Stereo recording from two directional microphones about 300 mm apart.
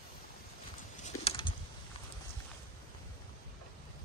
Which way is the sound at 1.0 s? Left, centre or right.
Centre.